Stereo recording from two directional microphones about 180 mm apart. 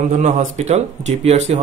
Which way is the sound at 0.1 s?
45° right (ahead or behind).